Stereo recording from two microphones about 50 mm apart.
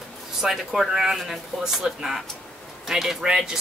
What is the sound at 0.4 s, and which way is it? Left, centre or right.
A woman's voice, centre.